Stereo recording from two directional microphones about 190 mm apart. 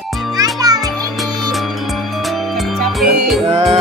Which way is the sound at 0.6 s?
20° right (ahead or behind).